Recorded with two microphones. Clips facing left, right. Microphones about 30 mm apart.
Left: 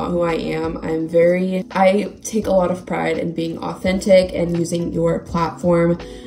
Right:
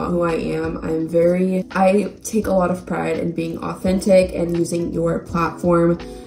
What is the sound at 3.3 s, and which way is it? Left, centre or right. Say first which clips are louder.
Speech: left 1 dB; left.